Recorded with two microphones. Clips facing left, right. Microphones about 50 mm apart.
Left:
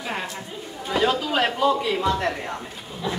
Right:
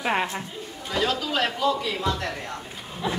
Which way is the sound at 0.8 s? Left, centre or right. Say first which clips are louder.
Left 4 dB; centre.